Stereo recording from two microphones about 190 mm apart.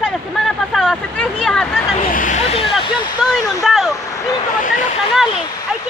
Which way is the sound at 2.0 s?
45° left (ahead or behind).